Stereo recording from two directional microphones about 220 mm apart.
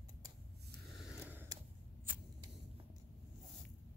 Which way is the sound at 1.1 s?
10° right (ahead or behind).